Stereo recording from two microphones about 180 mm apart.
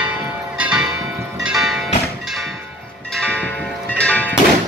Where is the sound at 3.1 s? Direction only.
5° left (ahead or behind).